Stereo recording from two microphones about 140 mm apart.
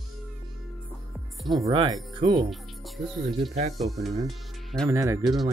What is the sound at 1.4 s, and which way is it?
Speech, centre (ahead or behind).